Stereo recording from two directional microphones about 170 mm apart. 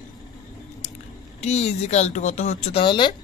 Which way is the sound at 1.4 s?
40° left (ahead or behind).